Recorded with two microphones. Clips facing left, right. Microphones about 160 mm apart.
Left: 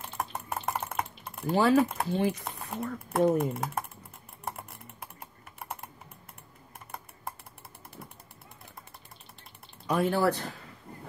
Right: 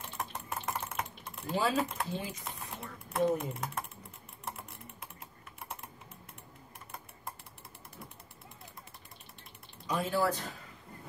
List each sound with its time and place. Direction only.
0.2 s typing: 60° left (ahead or behind)
9.8 s speech: 60° left (ahead or behind)